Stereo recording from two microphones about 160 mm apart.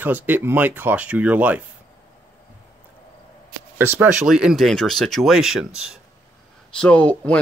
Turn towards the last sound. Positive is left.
turn(degrees=10)  # may be behind; listen again after turning